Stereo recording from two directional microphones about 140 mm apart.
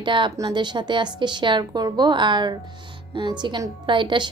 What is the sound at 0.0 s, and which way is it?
A woman's voice, 35° right (ahead or behind).